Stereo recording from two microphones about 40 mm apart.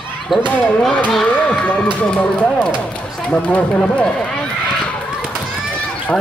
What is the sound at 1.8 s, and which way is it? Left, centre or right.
Speech, left.